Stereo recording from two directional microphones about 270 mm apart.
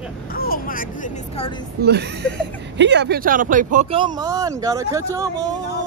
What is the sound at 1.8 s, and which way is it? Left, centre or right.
Speech, right.